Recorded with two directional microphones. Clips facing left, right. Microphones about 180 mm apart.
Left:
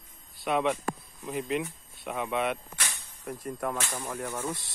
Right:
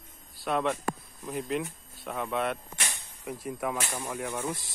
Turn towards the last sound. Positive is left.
turn(degrees=-10)  # may be behind; listen again after turning